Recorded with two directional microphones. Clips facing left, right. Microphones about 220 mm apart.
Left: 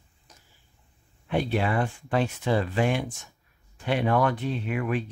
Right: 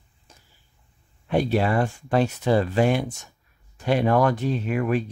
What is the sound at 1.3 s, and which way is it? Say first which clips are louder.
Speech: right 4 dB; 40° right (ahead or behind).